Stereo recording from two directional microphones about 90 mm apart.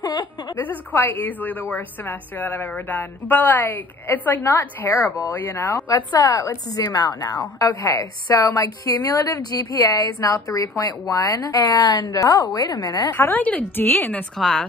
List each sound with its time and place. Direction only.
0.0 s a sound: 55° left (ahead or behind)
0.6 s a woman's voice: 20° left (ahead or behind)
5.8 s speech: 40° left (ahead or behind)
6.8 s a woman's voice: 50° left (ahead or behind)
7.5 s a woman's voice: 40° left (ahead or behind)
13.2 s a woman's voice: 20° left (ahead or behind)
14.4 s speech: 5° left (ahead or behind)